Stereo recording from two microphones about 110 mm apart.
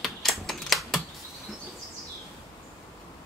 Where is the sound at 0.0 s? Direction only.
Centre (ahead or behind).